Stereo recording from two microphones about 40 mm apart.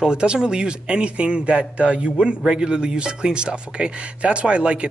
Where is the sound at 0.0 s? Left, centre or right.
Right.